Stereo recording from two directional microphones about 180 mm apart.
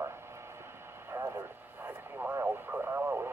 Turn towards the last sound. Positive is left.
turn(degrees=-10)  # may be behind; listen again after turning